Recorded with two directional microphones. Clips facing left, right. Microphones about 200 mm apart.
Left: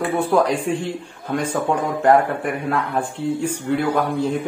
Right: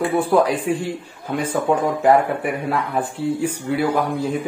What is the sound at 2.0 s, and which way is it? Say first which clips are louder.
Speech: left 1 dB; 10° right (ahead or behind).